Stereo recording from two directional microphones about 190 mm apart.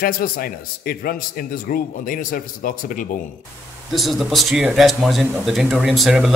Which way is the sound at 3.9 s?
Centre (ahead or behind).